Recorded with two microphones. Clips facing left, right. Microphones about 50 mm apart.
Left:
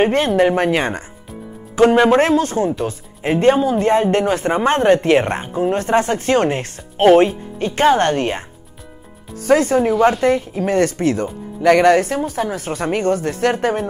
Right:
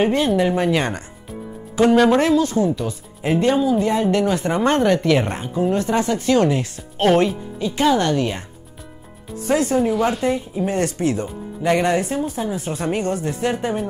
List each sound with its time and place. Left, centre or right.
0.0 s speech: left
7.0 s speech: left
7.5 s a woman's voice: left
9.5 s a woman's voice: left
9.9 s speech: centre
10.2 s a woman's voice: left